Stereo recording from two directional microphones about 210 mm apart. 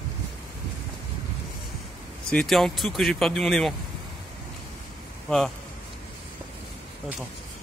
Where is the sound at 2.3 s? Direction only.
Centre (ahead or behind).